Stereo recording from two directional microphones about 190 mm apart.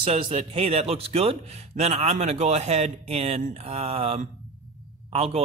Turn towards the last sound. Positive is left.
turn(degrees=-30)  # may be behind; listen again after turning